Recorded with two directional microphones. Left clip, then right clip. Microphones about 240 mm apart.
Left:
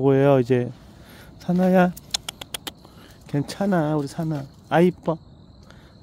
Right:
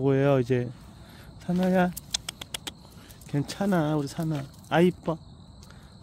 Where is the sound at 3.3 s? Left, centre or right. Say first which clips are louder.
Left 4 dB; centre.